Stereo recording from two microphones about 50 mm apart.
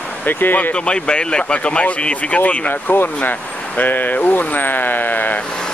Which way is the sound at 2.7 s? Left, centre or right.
Left.